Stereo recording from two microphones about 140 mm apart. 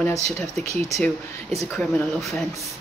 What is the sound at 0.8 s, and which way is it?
Speech, 50° right (ahead or behind).